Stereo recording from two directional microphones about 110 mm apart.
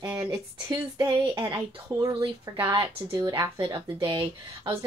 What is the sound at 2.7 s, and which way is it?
Speech, 45° right (ahead or behind).